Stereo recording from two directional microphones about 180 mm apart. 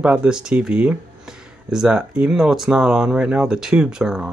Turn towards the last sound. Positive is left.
turn(degrees=-5)  # may be behind; listen again after turning